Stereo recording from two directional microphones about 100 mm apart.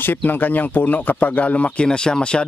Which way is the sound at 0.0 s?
20° left (ahead or behind).